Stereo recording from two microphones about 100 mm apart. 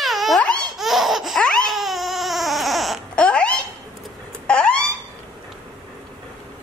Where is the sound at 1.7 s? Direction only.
Centre (ahead or behind).